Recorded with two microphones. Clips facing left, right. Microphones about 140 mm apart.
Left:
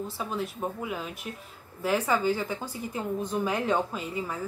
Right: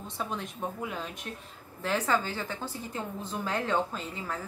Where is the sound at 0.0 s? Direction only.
5° left (ahead or behind).